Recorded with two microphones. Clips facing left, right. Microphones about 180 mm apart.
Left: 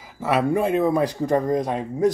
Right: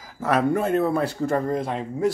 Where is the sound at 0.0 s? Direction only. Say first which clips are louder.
Even; 5° left (ahead or behind).